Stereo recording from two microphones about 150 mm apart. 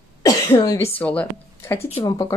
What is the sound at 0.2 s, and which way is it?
Speech, 25° left (ahead or behind).